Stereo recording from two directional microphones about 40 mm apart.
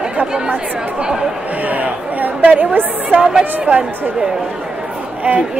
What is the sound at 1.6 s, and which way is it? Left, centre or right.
Speech, right.